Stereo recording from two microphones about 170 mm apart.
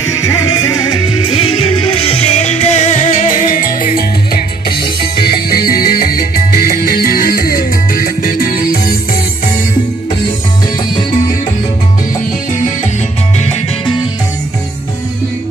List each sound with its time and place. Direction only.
0.2 s music: 20° left (ahead or behind)
1.2 s music: 30° left (ahead or behind); by 8.7 s 60° left (ahead or behind)